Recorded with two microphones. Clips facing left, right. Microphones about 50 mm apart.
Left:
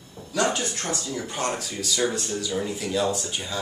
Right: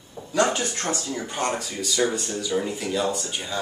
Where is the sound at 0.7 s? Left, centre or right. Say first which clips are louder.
Right 2 dB; right.